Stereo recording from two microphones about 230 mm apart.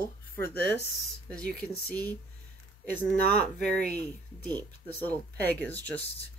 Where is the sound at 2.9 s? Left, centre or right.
Centre.